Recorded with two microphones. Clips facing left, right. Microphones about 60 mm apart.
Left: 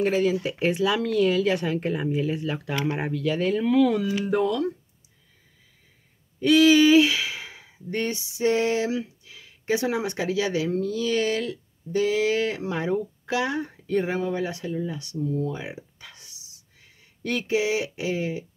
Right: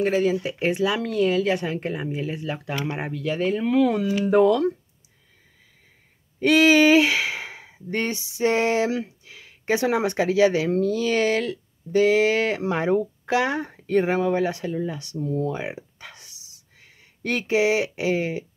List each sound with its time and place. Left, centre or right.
0.0 s speech: centre
4.3 s speech: right
6.4 s speech: right
10.1 s speech: right
10.7 s speech: right
15.6 s a sound: right
17.2 s speech: right